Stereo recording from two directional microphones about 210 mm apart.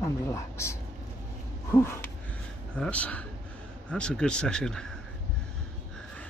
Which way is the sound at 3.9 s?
5° left (ahead or behind).